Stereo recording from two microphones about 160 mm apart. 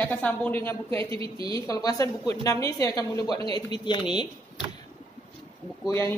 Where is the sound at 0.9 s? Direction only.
35° right (ahead or behind).